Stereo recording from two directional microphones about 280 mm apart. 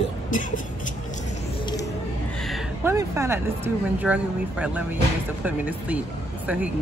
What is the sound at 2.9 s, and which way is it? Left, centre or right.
Speech, centre.